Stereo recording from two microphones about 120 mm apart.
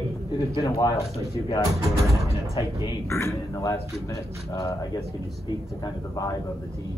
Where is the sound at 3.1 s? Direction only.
25° left (ahead or behind).